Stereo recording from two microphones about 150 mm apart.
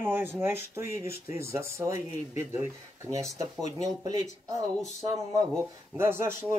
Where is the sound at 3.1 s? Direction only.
20° right (ahead or behind).